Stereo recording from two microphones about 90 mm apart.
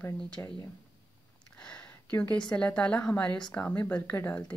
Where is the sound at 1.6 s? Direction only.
10° left (ahead or behind).